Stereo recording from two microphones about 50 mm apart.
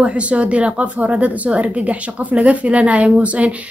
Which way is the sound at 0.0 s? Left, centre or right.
Right.